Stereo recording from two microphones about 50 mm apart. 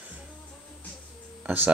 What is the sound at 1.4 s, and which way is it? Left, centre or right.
Speech, right.